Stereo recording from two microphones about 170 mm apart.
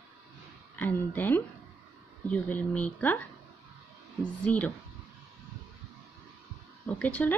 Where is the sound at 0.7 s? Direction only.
10° left (ahead or behind).